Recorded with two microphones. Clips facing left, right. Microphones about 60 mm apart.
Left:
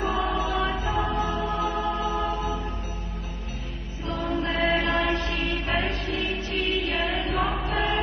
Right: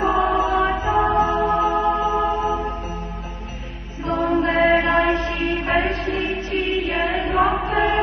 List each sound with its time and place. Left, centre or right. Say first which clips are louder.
0.0 s music: right 7 dB; right
0.8 s music: right 8 dB; right
2.2 s choir: right 7 dB; right
4.0 s music: right 8 dB; right
4.5 s mantra: right 7 dB; right
4.8 s music: right 6 dB; right
6.9 s music: right 5 dB; right
7.3 s choir: right 10 dB; right